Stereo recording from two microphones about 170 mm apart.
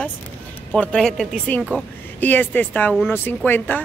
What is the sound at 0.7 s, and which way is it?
Speech, 5° left (ahead or behind).